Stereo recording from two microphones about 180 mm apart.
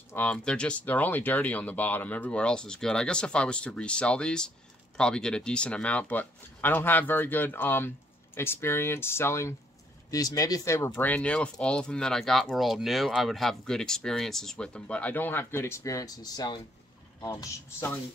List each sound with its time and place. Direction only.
0.1 s speech: 5° left (ahead or behind)